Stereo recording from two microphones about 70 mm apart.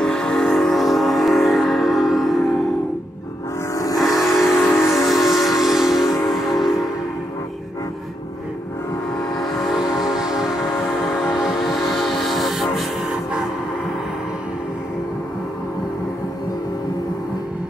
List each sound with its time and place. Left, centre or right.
0.0 s train: centre
3.7 s train: left
4.0 s vehicle: centre
4.9 s train: centre
6.3 s music: centre
9.4 s train: centre
9.8 s train: centre
11.1 s music: centre